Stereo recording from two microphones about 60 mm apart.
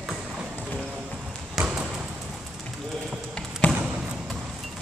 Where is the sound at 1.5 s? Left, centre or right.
Centre.